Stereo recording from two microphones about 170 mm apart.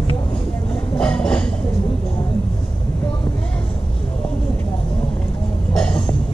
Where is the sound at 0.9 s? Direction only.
5° left (ahead or behind).